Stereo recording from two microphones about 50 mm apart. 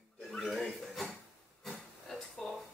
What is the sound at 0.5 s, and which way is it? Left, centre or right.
Speech, centre.